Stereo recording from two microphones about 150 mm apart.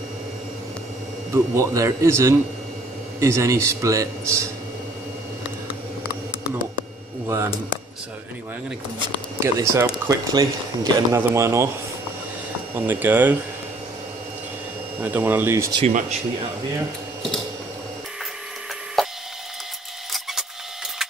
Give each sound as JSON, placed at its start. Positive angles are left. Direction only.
{"t": 1.3, "sound": "speech", "side_deg": -20}
{"t": 7.2, "sound": "speech", "side_deg": -20}
{"t": 9.4, "sound": "speech", "side_deg": -20}
{"t": 12.7, "sound": "speech", "side_deg": -15}
{"t": 15.0, "sound": "speech", "side_deg": -10}
{"t": 19.0, "sound": "splinter", "side_deg": 0}